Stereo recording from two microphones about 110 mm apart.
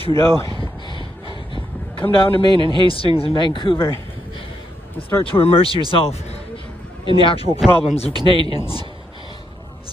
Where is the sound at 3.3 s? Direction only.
45° left (ahead or behind).